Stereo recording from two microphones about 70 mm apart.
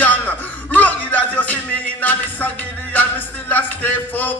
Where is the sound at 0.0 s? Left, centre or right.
Left.